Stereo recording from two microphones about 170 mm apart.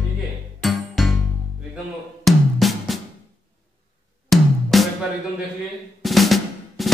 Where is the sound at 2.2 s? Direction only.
Centre (ahead or behind).